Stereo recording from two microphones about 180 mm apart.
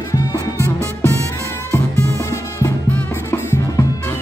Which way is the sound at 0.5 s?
15° right (ahead or behind).